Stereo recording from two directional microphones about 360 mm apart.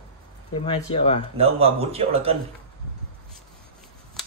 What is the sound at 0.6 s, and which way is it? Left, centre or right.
Speech, centre.